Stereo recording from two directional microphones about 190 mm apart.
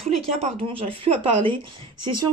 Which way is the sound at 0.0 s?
30° right (ahead or behind).